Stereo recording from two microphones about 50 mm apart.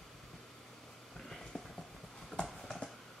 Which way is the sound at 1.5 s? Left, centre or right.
Left.